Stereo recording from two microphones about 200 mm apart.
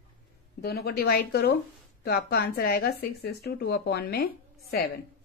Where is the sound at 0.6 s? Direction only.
50° left (ahead or behind).